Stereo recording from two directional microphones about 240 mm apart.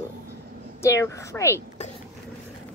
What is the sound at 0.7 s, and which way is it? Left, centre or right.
Speech, centre.